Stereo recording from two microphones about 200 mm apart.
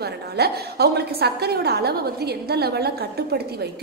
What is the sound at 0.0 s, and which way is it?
A woman's voice, 55° right (ahead or behind).